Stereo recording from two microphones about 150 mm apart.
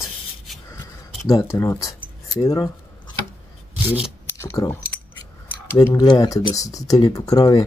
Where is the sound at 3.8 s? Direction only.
10° right (ahead or behind).